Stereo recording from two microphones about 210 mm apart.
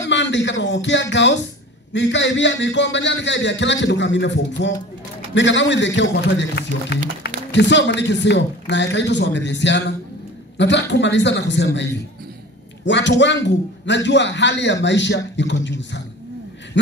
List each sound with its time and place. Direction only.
0.0 s a man's voice: 60° left (ahead or behind)